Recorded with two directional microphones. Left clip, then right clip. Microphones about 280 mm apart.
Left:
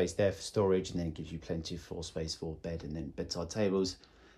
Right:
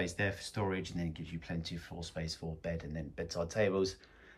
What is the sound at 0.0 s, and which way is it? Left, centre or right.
Speech, centre.